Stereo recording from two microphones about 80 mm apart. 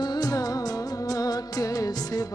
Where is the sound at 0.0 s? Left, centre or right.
Left.